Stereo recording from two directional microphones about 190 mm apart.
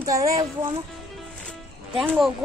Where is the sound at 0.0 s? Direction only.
20° right (ahead or behind).